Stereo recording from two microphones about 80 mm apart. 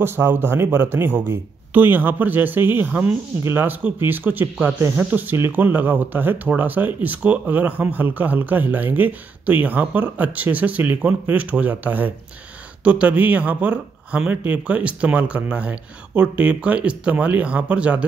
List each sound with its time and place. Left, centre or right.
0.0 s speech: right